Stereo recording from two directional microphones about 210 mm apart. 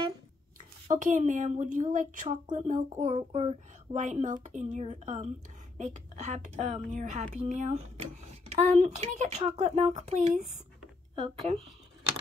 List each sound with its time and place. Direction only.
0.9 s a woman's voice: 35° right (ahead or behind)